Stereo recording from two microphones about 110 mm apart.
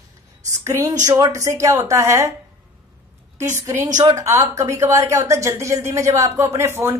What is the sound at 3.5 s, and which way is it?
Speech, 20° right (ahead or behind).